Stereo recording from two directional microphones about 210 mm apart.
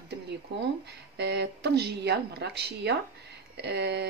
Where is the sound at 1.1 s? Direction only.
50° right (ahead or behind).